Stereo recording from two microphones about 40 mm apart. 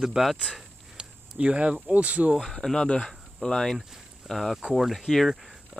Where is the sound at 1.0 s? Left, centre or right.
Right.